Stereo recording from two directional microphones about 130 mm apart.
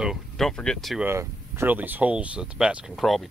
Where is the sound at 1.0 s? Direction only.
20° right (ahead or behind).